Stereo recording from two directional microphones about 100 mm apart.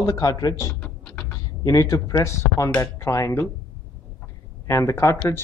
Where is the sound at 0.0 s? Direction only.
40° left (ahead or behind).